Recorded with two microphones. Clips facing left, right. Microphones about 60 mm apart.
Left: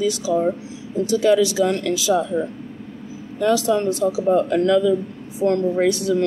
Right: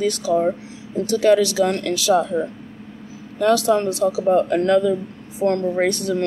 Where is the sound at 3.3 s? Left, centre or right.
Right.